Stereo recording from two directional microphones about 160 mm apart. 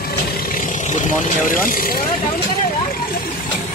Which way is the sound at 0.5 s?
55° left (ahead or behind).